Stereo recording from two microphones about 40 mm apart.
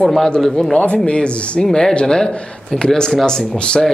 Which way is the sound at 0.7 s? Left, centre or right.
Left.